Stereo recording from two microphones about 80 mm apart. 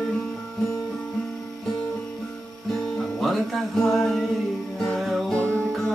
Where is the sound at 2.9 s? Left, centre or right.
Centre.